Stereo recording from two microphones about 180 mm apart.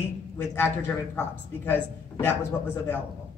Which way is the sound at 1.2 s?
10° left (ahead or behind).